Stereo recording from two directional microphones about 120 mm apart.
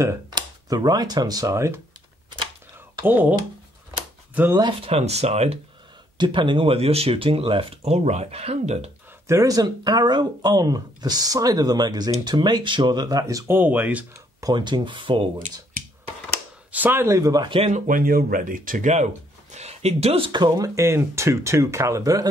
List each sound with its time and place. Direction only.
0.3 s speech: 35° right (ahead or behind)
3.0 s speech: 15° right (ahead or behind)
4.4 s speech: 10° right (ahead or behind)
4.8 s speech: 60° right (ahead or behind)
6.1 s speech: 40° right (ahead or behind); by 8.9 s 60° right (ahead or behind)
9.3 s speech: 30° right (ahead or behind)
13.5 s speech: 15° right (ahead or behind)
14.4 s speech: 40° right (ahead or behind)
16.7 s speech: 15° right (ahead or behind)
17.5 s speech: 50° right (ahead or behind)
18.4 s speech: 90° right
19.5 s a sound: 65° right (ahead or behind)
20.2 s speech: 35° right (ahead or behind)